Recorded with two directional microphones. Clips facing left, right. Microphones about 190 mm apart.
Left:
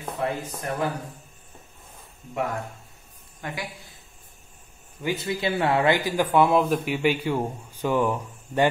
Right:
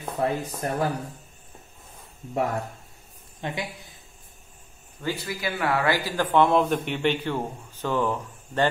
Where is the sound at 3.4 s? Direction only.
25° right (ahead or behind).